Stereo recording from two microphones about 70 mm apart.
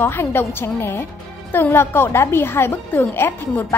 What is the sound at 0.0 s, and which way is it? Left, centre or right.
A woman's voice, left.